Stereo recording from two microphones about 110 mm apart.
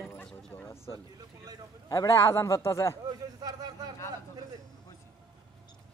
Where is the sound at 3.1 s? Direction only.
40° right (ahead or behind).